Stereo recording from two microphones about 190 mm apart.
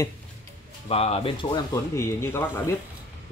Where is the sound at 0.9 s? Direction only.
30° left (ahead or behind).